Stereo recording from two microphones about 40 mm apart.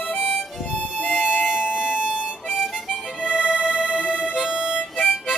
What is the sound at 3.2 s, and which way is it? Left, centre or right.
Music, right.